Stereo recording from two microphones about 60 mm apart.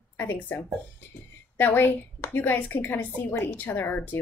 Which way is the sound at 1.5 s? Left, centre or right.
Left.